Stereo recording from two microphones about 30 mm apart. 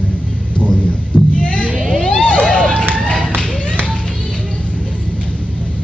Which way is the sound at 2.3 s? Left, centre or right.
Left.